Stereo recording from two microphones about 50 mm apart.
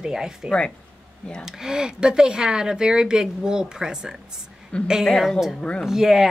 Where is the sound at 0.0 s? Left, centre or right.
Centre.